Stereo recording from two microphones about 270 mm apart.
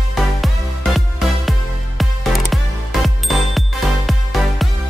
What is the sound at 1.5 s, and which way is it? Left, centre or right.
Music, centre.